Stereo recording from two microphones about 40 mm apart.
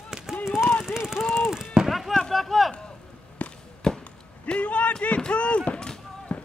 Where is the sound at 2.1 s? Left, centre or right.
Centre.